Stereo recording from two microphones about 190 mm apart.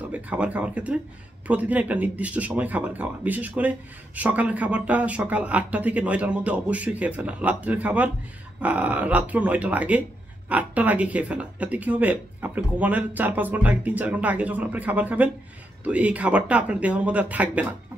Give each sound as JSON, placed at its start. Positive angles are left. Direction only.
{"t": 0.1, "sound": "speech", "side_deg": -10}